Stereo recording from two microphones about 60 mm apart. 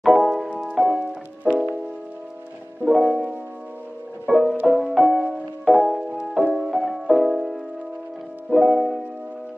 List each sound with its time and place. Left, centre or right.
0.0 s music: centre
2.8 s music: centre
4.3 s music: centre
5.9 s music: centre
8.5 s music: centre